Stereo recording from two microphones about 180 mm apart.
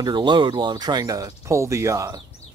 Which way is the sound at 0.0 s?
25° right (ahead or behind).